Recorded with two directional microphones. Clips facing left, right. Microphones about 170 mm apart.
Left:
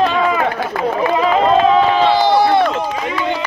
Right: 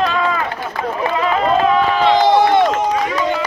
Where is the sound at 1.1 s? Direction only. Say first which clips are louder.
Left 2 dB; 25° left (ahead or behind).